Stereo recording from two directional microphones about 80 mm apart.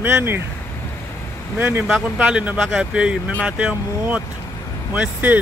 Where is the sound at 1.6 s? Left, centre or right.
Right.